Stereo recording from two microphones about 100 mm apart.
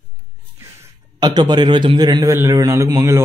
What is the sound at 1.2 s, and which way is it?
A man's voice, 45° right (ahead or behind).